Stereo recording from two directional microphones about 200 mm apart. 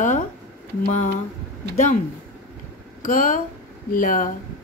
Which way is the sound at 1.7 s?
35° left (ahead or behind).